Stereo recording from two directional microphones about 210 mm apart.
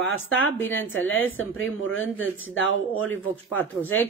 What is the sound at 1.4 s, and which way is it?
Speech, 70° left (ahead or behind).